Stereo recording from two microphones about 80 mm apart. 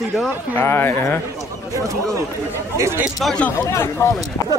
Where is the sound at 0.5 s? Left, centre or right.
Left.